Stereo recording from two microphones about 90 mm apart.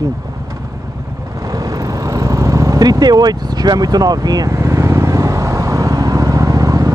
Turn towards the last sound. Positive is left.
turn(degrees=-40)  # may be behind; listen again after turning